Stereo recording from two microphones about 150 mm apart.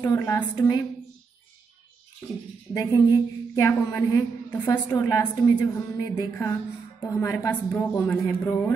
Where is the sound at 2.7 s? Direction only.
20° left (ahead or behind).